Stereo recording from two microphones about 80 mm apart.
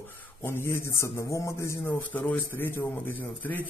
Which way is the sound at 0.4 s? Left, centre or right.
Left.